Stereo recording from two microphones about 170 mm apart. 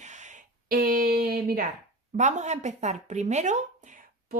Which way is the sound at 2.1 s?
45° right (ahead or behind).